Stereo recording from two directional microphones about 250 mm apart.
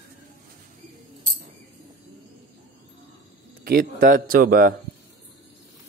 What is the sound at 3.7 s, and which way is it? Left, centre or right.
A man's voice, right.